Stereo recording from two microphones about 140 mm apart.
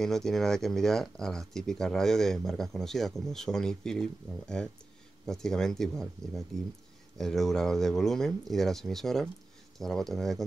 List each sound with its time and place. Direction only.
0.0 s speech: 5° left (ahead or behind)